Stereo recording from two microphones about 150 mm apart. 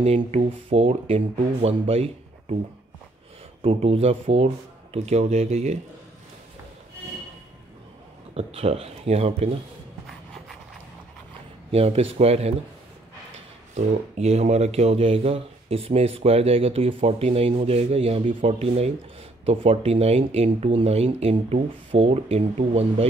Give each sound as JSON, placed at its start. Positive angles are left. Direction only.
{"t": 0.0, "sound": "speech", "side_deg": -45}
{"t": 3.6, "sound": "speech", "side_deg": -40}
{"t": 8.4, "sound": "speech", "side_deg": -40}
{"t": 11.7, "sound": "speech", "side_deg": -40}
{"t": 13.7, "sound": "speech", "side_deg": -45}